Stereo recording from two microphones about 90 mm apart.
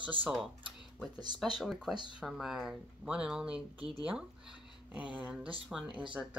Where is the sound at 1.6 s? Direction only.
Centre (ahead or behind).